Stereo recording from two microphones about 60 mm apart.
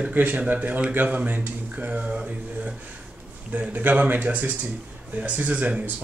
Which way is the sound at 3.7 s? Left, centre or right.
Right.